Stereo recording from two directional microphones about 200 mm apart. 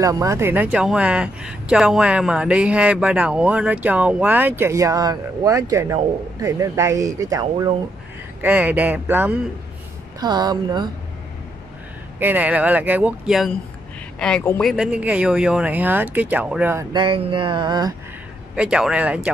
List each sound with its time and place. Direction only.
0.0 s speech: 15° right (ahead or behind)
10.2 s speech: 20° right (ahead or behind)
12.2 s speech: 10° right (ahead or behind)
14.2 s speech: 10° left (ahead or behind)
14.7 s speech: 5° right (ahead or behind)
16.9 s speech: 25° right (ahead or behind)
18.6 s speech: 5° right (ahead or behind)